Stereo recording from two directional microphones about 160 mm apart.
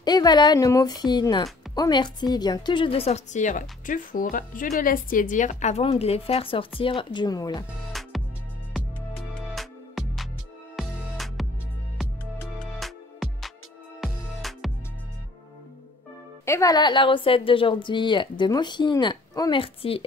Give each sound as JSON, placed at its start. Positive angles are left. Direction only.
{"t": 0.0, "sound": "a woman's voice", "side_deg": 25}
{"t": 7.9, "sound": "music", "side_deg": 0}
{"t": 9.6, "sound": "music", "side_deg": 0}
{"t": 12.5, "sound": "music", "side_deg": 0}
{"t": 16.4, "sound": "speech", "side_deg": 20}